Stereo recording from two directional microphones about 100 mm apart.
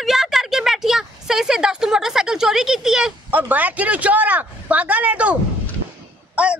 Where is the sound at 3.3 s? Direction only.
15° right (ahead or behind).